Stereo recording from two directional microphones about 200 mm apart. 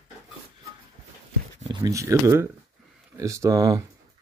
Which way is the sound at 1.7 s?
15° right (ahead or behind).